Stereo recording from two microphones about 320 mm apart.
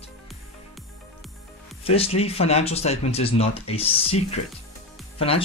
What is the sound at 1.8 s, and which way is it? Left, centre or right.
Speech, centre.